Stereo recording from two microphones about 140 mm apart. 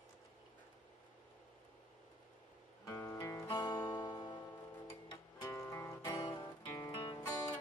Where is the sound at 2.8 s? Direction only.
20° left (ahead or behind).